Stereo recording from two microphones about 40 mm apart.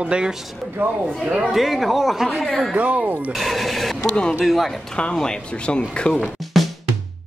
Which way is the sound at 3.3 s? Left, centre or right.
Centre.